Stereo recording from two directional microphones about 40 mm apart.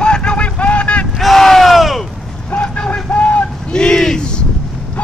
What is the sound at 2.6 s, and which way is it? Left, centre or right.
Vehicle, left.